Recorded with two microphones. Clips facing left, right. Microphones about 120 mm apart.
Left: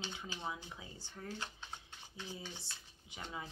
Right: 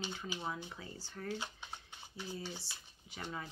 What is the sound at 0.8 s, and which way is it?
Speech, 20° left (ahead or behind).